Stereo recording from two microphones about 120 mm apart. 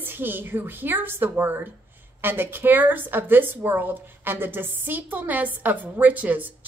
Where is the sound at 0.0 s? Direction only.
15° right (ahead or behind).